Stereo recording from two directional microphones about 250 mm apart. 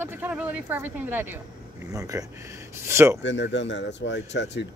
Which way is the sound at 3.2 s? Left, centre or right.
Left.